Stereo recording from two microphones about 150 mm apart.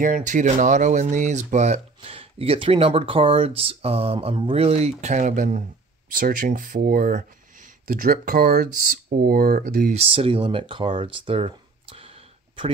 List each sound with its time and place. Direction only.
0.0 s speech: 55° right (ahead or behind)
6.1 s speech: 70° right (ahead or behind); by 7.2 s 85° right
7.9 s speech: 75° right (ahead or behind)
9.9 s speech: 40° right (ahead or behind)